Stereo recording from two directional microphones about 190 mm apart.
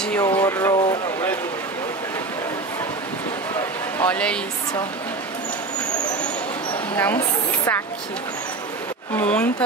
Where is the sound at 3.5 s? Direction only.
5° left (ahead or behind).